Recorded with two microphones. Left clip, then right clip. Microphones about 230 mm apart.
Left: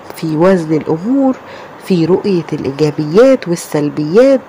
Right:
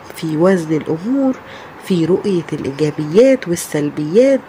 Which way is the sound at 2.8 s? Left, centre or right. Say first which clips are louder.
Left 3 dB; centre.